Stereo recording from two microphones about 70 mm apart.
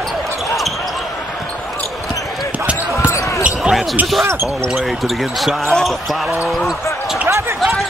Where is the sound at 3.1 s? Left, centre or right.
Left.